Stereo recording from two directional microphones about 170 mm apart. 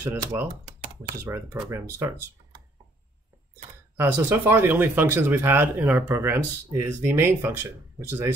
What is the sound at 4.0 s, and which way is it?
Speech, 10° right (ahead or behind).